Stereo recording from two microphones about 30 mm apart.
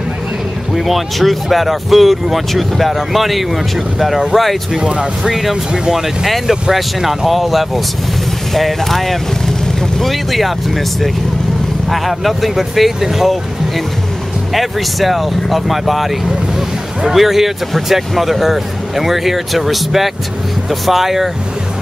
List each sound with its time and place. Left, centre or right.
0.7 s speech: centre
5.5 s speech: centre
6.7 s speech: centre
14.5 s speech: centre
16.5 s a sound: centre
17.2 s speech: centre